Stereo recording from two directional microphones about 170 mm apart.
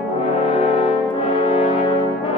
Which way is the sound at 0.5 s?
35° left (ahead or behind).